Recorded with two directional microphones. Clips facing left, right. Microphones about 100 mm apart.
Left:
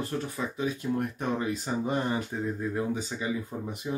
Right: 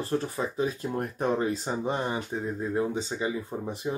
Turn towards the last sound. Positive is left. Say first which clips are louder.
# right 3 dB
turn(degrees=-30)  # may be behind; listen again after turning